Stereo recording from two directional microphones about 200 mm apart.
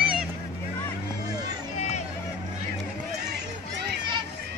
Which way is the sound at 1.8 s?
35° left (ahead or behind).